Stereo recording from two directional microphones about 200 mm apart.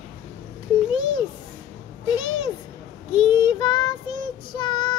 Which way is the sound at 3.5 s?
20° left (ahead or behind).